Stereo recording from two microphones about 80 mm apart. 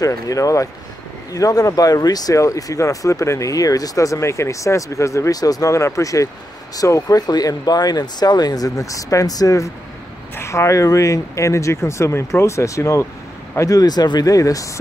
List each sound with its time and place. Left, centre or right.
0.0 s speech: left
10.3 s speech: left